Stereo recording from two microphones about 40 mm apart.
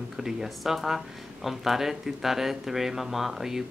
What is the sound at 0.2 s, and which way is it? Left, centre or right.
Speech, centre.